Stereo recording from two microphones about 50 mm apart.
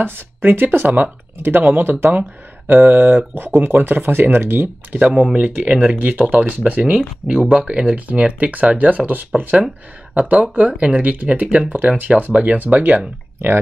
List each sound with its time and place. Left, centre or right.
0.0 s speech: right
4.9 s speech: right
5.9 s speech: right
7.0 s speech: centre; by 13.0 s right